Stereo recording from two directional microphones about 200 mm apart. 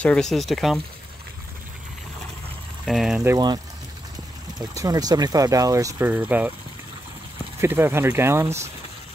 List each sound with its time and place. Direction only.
0.0 s speech: 5° left (ahead or behind)
2.8 s speech: centre (ahead or behind)
3.3 s speech: 20° right (ahead or behind)
7.6 s speech: 10° right (ahead or behind)